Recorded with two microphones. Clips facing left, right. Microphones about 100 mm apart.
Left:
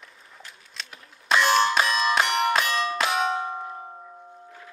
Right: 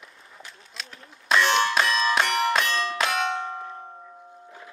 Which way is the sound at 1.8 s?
5° left (ahead or behind).